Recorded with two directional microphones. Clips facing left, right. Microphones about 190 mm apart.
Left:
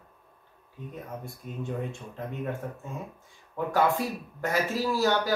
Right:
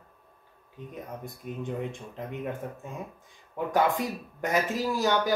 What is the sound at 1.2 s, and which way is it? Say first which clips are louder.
Speech: right 3 dB; 15° right (ahead or behind).